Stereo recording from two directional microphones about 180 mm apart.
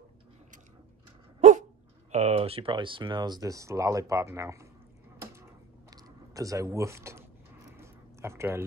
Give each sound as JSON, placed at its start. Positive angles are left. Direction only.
{"t": 1.4, "sound": "dog", "side_deg": -35}
{"t": 2.1, "sound": "speech", "side_deg": -35}
{"t": 5.9, "sound": "a sound", "side_deg": -20}